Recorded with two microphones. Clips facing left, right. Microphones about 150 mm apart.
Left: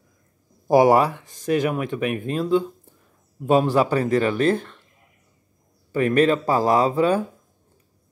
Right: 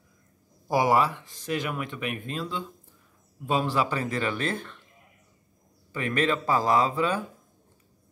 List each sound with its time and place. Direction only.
0.7 s speech: 45° left (ahead or behind)
3.4 s speech: 45° left (ahead or behind)
5.9 s speech: 45° left (ahead or behind)